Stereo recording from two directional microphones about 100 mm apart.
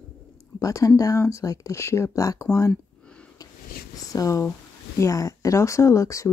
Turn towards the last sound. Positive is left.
turn(degrees=30)  # may be behind; listen again after turning